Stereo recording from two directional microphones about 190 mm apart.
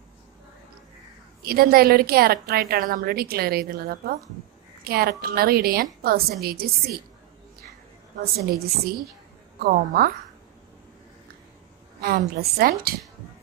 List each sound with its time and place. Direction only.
1.4 s a woman's voice: 50° right (ahead or behind)
8.2 s a woman's voice: 50° right (ahead or behind)
12.0 s a woman's voice: 55° right (ahead or behind)